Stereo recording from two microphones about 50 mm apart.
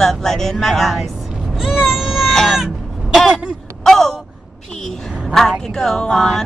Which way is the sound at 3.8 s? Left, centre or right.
Centre.